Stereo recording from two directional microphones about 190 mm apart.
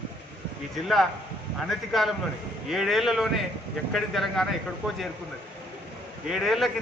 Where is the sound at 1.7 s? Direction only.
Centre (ahead or behind).